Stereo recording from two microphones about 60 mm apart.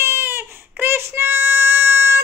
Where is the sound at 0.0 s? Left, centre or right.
Right.